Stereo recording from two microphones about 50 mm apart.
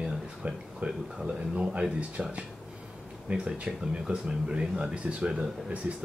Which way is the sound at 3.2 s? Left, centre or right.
Right.